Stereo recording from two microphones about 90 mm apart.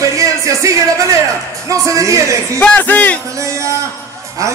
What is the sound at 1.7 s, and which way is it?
Speech, 35° right (ahead or behind).